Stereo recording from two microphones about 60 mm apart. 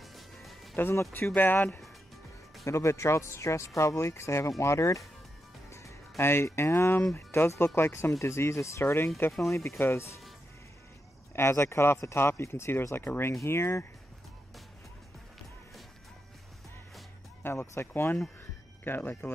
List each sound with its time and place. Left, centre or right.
0.0 s music: centre
0.8 s speech: left
2.6 s speech: left
5.7 s music: left
6.1 s speech: left
8.2 s speech: left
11.3 s speech: left
13.5 s speech: left
17.4 s speech: left